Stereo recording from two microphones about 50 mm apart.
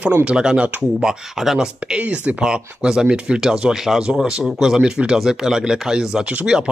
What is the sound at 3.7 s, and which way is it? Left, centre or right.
Speech, centre.